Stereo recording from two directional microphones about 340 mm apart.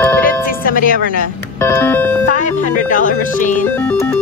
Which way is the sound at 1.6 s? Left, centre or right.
Centre.